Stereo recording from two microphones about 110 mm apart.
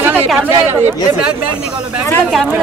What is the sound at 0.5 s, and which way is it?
Speech, 20° right (ahead or behind).